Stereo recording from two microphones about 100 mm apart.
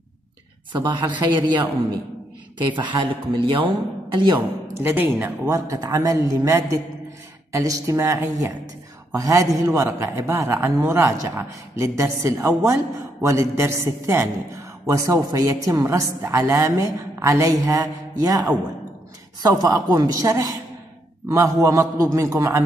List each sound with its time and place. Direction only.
0.7 s speech: 50° right (ahead or behind)
4.7 s a man's voice: 20° right (ahead or behind)
5.7 s a woman's voice: 35° right (ahead or behind)